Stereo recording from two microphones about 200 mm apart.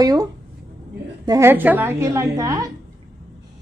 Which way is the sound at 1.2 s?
15° right (ahead or behind).